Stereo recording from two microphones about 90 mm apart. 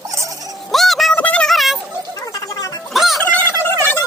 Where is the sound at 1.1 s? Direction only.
15° left (ahead or behind).